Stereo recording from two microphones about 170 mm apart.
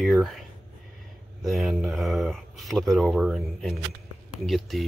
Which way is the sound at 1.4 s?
Centre (ahead or behind).